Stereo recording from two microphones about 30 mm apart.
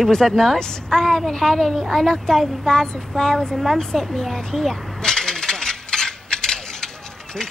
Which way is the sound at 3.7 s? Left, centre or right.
Centre.